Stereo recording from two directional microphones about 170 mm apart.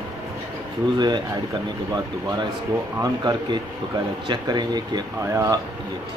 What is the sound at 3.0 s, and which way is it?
Speech, 25° right (ahead or behind).